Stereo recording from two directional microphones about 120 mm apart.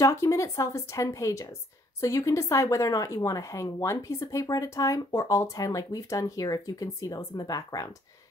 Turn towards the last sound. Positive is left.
turn(degrees=30)  # may be behind; listen again after turning